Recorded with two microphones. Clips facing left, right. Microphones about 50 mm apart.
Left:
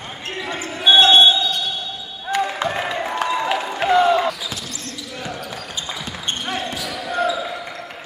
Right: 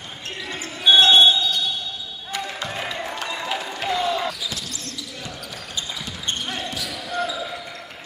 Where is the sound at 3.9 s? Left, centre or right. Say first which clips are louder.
Left 9 dB; left.